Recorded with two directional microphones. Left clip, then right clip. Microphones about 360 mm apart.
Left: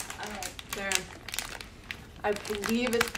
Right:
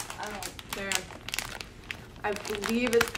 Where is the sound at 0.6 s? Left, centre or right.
Centre.